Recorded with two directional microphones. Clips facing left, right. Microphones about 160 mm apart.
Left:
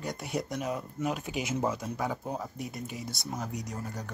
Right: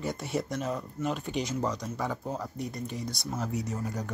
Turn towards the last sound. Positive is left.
turn(degrees=-5)  # may be behind; listen again after turning